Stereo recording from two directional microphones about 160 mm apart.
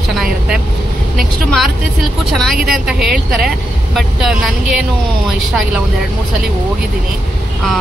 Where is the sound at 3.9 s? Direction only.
Centre (ahead or behind).